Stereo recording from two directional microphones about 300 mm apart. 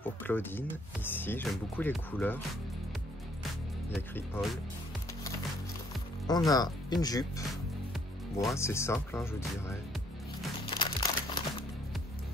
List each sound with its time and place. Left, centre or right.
0.0 s music: centre
1.1 s speech: centre
3.9 s speech: centre
6.2 s speech: centre
10.6 s crumpling: centre